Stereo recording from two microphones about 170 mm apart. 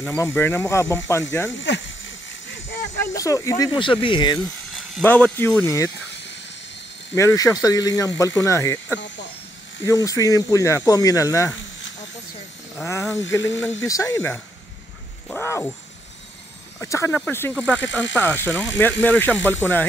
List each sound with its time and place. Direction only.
0.0 s speech: 15° left (ahead or behind)
1.7 s a sound: 90° left
3.2 s speech: 20° left (ahead or behind)
5.0 s speech: 10° left (ahead or behind)
7.2 s speech: 20° left (ahead or behind)
9.8 s speech: 20° left (ahead or behind)
12.8 s speech: 15° left (ahead or behind)
16.8 s speech: 15° left (ahead or behind)